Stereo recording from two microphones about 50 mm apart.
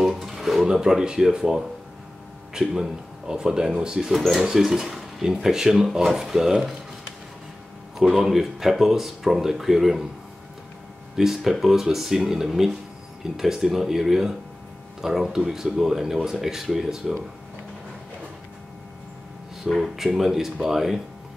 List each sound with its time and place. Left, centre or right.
0.0 s a sound: centre
0.7 s speech: centre
8.0 s speech: centre
11.1 s speech: centre
19.7 s speech: centre